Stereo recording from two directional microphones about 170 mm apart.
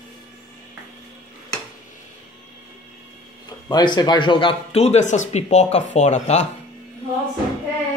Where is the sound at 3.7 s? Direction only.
25° left (ahead or behind); by 6.5 s 40° left (ahead or behind).